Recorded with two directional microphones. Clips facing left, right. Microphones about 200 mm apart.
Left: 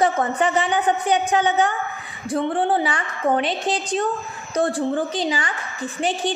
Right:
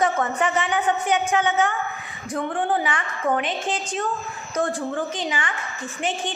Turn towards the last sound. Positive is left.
turn(degrees=35)  # may be behind; listen again after turning